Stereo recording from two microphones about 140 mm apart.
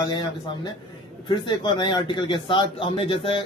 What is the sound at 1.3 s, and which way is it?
A man's voice, 35° left (ahead or behind).